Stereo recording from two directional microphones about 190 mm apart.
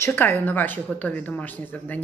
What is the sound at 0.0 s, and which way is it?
A woman's voice, 15° left (ahead or behind).